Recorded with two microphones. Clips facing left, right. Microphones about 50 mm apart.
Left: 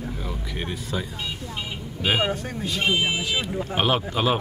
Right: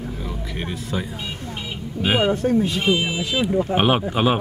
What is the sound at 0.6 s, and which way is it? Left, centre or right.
A man's voice, centre.